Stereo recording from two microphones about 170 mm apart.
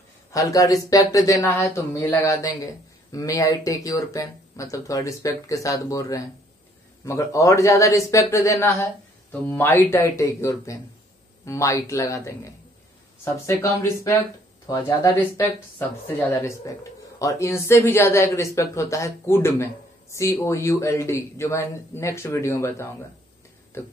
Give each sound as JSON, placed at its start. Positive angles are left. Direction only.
{"t": 0.3, "sound": "speech", "side_deg": 20}